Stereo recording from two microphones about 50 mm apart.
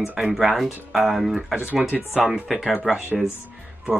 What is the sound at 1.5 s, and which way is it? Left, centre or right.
Speech, right.